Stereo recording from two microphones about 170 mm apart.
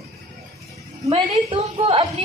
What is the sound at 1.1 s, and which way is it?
Speech, 35° right (ahead or behind).